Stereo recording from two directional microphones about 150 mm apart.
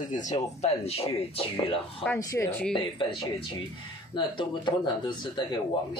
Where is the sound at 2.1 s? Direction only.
20° left (ahead or behind).